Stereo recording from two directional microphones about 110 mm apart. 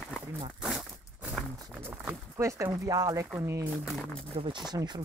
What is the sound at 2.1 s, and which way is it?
Speech, 25° right (ahead or behind).